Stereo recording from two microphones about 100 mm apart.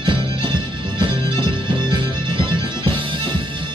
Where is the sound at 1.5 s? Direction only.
55° right (ahead or behind).